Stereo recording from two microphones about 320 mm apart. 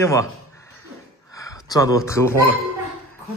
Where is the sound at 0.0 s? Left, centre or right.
Centre.